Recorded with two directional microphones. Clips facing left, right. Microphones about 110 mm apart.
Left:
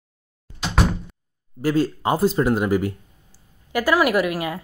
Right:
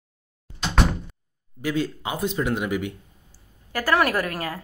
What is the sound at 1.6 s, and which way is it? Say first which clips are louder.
Speech: left 5 dB; 40° left (ahead or behind).